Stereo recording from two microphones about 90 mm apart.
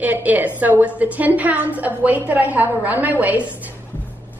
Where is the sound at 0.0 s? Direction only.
20° right (ahead or behind).